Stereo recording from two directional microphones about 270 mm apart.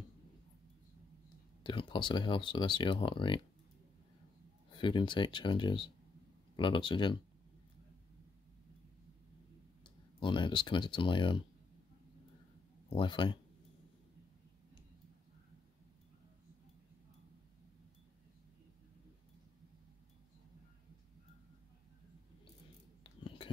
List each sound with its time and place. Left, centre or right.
1.6 s speech: centre
4.7 s speech: centre
10.2 s speech: centre
12.9 s speech: centre
23.2 s whispering: centre